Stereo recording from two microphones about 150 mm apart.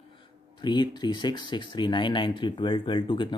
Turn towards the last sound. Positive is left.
turn(degrees=35)  # may be behind; listen again after turning